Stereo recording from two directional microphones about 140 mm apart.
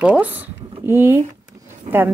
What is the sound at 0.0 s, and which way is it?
Speech, 10° right (ahead or behind).